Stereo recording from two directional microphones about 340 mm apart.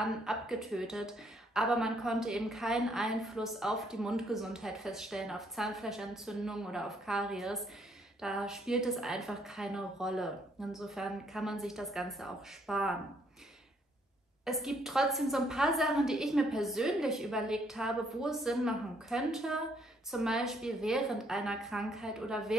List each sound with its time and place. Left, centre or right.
0.0 s a woman's voice: centre
14.4 s a woman's voice: centre